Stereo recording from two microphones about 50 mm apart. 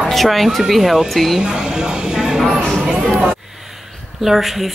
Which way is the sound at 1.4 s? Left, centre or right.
Centre.